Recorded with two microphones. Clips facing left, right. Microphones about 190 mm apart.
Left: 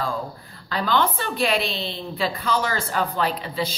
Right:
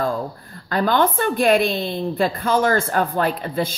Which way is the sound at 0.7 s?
50° right (ahead or behind).